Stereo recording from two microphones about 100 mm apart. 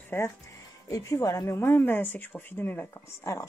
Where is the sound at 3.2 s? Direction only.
30° left (ahead or behind).